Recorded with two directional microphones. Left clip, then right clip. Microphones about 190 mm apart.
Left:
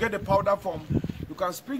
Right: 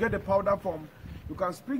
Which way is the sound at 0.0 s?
5° right (ahead or behind).